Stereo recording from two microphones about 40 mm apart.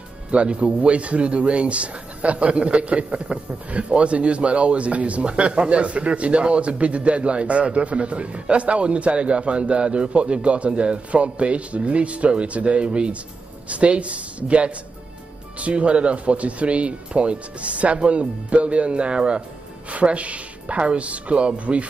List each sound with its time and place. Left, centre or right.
0.3 s speech: right
19.9 s speech: right